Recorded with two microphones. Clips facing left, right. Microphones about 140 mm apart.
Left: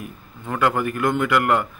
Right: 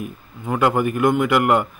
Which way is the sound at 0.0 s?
20° right (ahead or behind).